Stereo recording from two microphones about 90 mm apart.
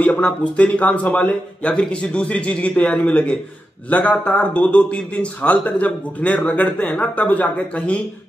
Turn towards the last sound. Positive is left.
turn(degrees=15)  # may be behind; listen again after turning